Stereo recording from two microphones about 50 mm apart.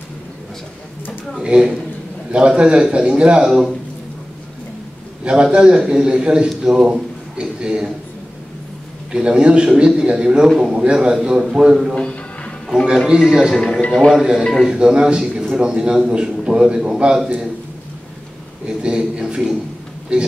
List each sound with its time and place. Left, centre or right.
1.4 s a man's voice: centre
5.2 s a man's voice: centre
9.1 s a man's voice: centre
11.9 s music: left
13.1 s a man's voice: centre
14.7 s a man's voice: centre
18.7 s a man's voice: centre